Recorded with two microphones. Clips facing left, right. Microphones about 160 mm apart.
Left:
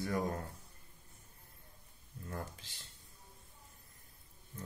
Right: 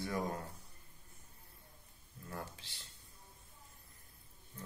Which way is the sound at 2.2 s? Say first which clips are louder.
Left 2 dB; 40° left (ahead or behind).